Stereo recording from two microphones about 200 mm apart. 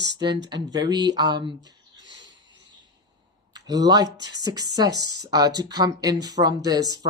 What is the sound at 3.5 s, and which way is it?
Speech, 20° right (ahead or behind).